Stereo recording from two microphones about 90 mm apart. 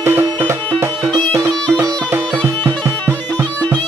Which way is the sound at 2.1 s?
25° right (ahead or behind).